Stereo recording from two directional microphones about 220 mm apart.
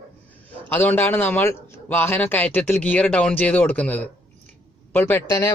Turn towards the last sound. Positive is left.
turn(degrees=15)  # may be behind; listen again after turning